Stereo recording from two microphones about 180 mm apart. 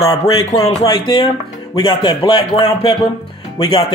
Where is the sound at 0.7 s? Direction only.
25° left (ahead or behind).